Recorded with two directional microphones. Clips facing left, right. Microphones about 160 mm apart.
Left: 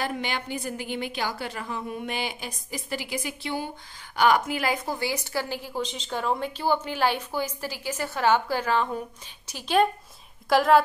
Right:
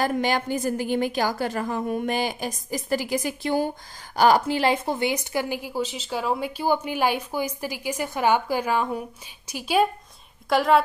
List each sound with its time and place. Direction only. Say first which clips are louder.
0.0 s a woman's voice: right 7 dB; 45° right (ahead or behind); by 9.8 s 10° right (ahead or behind)
10.5 s a woman's voice: even; centre (ahead or behind)